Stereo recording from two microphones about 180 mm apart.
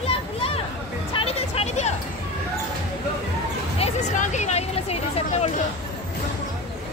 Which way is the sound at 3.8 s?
40° left (ahead or behind).